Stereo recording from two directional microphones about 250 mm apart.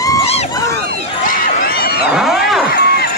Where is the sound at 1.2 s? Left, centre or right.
Left.